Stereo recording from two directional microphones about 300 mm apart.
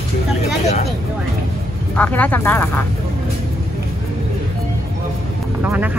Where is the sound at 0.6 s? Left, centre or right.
Left.